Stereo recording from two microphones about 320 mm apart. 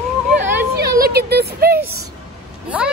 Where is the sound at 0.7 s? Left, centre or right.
Right.